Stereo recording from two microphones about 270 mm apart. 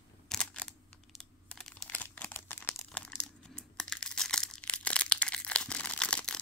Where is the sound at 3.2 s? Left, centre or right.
Centre.